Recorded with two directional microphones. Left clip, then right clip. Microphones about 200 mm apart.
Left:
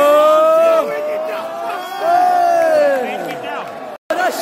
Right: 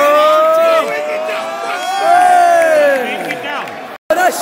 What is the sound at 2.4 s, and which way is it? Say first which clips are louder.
Crowd: right 3 dB; 5° left (ahead or behind).